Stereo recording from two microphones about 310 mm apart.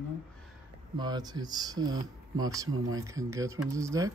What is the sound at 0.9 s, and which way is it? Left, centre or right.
Speech, centre.